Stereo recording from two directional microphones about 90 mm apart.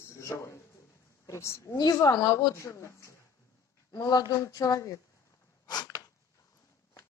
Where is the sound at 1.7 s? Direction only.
45° left (ahead or behind).